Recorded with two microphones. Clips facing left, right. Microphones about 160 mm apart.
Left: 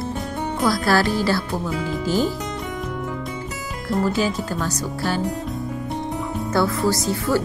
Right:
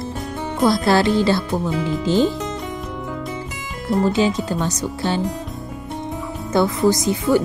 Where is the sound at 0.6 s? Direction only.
25° right (ahead or behind).